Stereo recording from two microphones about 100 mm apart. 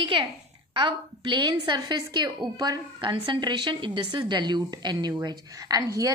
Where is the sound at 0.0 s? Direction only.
60° right (ahead or behind); by 2.8 s 40° right (ahead or behind).